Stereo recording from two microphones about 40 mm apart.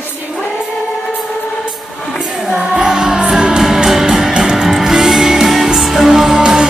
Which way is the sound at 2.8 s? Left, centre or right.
Centre.